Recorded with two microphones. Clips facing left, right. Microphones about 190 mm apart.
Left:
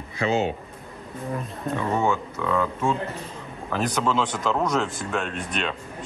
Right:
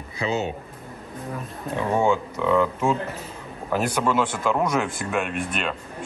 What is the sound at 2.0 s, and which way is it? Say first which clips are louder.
Speech: right 3 dB; 15° right (ahead or behind).